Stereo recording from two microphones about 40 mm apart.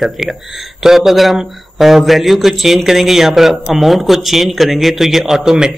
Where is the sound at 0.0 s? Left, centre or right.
Centre.